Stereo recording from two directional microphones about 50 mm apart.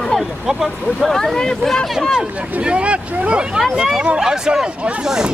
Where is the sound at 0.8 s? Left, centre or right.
Centre.